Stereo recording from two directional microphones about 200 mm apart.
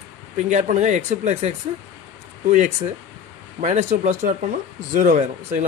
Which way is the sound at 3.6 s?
40° right (ahead or behind).